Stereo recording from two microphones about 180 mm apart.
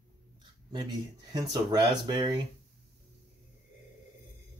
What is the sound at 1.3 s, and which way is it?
Speech, 25° right (ahead or behind).